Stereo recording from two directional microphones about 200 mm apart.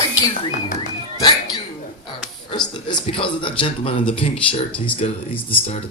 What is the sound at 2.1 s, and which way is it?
Speech, 20° left (ahead or behind).